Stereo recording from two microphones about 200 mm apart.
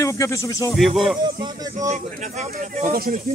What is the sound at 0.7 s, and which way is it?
Speech, centre (ahead or behind).